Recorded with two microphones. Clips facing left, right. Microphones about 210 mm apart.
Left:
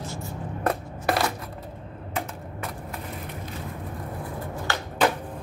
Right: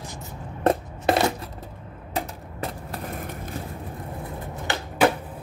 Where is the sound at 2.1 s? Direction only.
35° right (ahead or behind).